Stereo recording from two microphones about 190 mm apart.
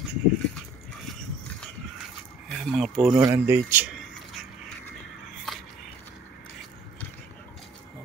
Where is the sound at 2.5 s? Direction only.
Centre (ahead or behind).